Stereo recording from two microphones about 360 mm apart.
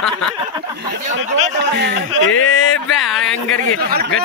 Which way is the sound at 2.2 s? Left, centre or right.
Left.